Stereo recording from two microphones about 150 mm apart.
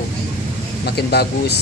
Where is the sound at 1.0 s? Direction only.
90° left.